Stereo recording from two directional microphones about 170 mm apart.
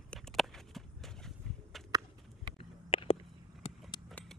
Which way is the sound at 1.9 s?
25° right (ahead or behind).